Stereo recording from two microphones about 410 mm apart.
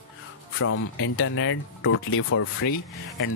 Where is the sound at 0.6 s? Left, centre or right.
Left.